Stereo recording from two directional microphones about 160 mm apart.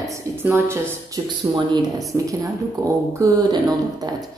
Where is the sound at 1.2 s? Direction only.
30° right (ahead or behind).